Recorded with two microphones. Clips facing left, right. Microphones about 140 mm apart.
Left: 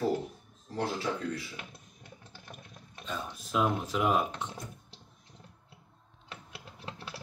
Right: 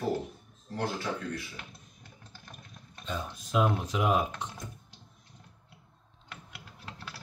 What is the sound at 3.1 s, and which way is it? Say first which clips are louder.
Speech: right 1 dB; centre (ahead or behind).